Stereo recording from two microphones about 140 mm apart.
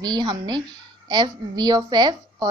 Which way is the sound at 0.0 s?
30° right (ahead or behind).